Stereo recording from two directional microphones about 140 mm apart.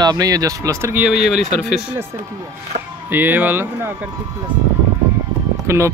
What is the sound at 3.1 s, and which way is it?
Speech, 15° right (ahead or behind).